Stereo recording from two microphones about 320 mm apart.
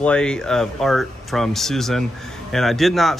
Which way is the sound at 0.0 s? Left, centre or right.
Centre.